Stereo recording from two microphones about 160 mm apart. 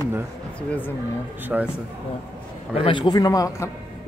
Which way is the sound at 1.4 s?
10° right (ahead or behind).